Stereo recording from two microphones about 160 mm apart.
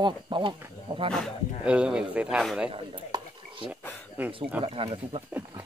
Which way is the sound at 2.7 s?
35° right (ahead or behind).